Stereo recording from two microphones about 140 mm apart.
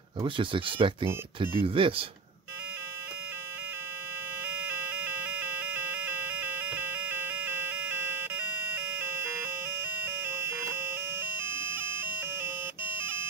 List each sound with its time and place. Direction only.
0.2 s speech: 35° right (ahead or behind)
4.6 s music: 15° right (ahead or behind)
12.9 s a sound: 15° right (ahead or behind)